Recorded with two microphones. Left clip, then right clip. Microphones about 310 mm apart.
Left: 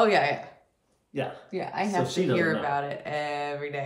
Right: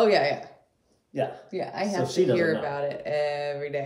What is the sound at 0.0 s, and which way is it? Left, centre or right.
Speech, centre.